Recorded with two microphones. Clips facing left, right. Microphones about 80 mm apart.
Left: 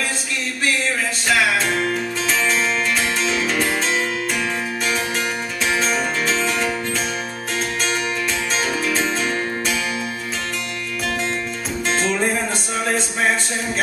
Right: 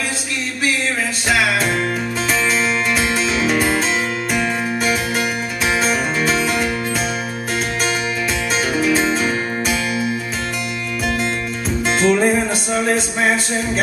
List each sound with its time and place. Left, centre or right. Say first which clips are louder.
1.3 s music: right 1 dB; centre
5.7 s music: right 2 dB; centre
8.5 s music: right 6 dB; centre
11.9 s music: right 6 dB; centre